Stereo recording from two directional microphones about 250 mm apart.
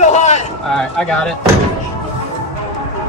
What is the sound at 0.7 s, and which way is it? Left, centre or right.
Speech, centre.